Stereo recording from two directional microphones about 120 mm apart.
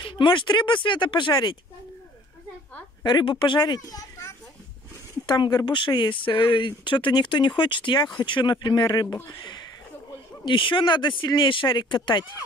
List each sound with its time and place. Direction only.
0.0 s speech: 45° left (ahead or behind)
3.0 s speech: 35° left (ahead or behind)
5.3 s speech: 35° left (ahead or behind)
10.4 s speech: 45° left (ahead or behind)